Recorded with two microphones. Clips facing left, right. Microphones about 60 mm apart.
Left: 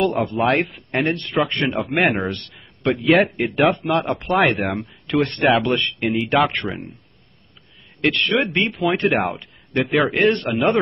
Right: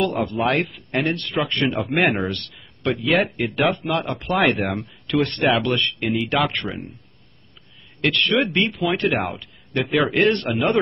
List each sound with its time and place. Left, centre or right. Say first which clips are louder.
0.1 s speech: left 2 dB; centre
1.8 s speech: left 2 dB; centre
8.0 s speech: left 1 dB; centre